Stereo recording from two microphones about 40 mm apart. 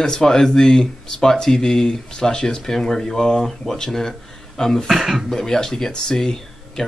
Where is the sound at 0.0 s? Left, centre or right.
Centre.